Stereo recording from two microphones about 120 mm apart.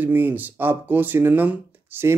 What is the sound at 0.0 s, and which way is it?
Speech, 15° right (ahead or behind).